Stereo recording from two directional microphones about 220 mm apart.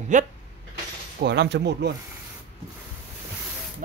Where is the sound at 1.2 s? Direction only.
50° right (ahead or behind).